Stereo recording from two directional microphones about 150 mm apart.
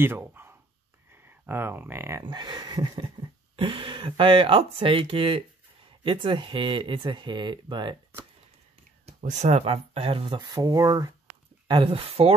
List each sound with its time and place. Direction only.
0.0 s dog: 15° right (ahead or behind)
1.1 s speech: 15° right (ahead or behind)
2.2 s a sound: 30° right (ahead or behind)
3.5 s speech: 35° right (ahead or behind)
9.0 s speech: 50° right (ahead or behind)